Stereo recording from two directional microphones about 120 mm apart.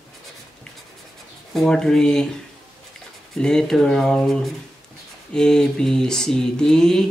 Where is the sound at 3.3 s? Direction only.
5° left (ahead or behind).